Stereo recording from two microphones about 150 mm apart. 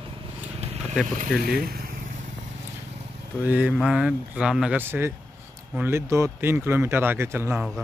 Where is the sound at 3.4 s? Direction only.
10° right (ahead or behind).